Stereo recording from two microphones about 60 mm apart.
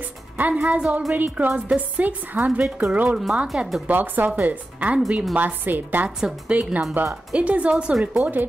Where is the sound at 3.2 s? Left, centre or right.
Centre.